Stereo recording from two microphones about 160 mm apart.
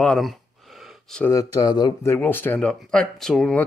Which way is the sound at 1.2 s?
20° left (ahead or behind).